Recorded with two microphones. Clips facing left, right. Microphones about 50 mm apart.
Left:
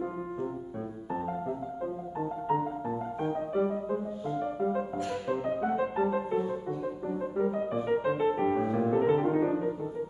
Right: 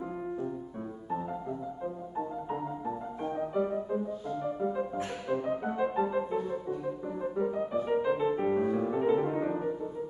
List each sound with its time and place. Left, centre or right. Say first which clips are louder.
2.1 s music: left 6 dB; centre
9.4 s music: left 3 dB; centre